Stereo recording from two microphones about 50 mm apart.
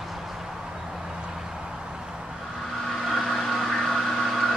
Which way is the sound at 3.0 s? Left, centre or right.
Centre.